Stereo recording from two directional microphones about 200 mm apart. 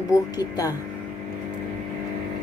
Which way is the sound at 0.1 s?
20° left (ahead or behind).